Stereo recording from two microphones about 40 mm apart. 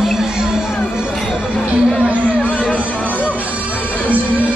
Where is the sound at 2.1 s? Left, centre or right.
Right.